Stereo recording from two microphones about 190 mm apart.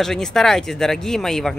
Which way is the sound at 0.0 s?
Centre (ahead or behind).